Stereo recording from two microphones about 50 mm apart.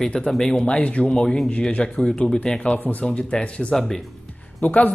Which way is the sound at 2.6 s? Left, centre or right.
Left.